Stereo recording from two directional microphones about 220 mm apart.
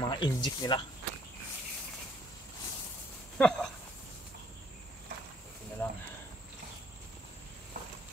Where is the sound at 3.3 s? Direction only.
5° left (ahead or behind).